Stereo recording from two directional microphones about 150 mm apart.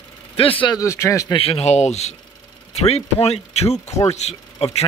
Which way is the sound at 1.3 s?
40° left (ahead or behind).